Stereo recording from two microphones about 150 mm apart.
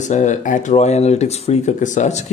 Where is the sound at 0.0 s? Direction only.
55° left (ahead or behind).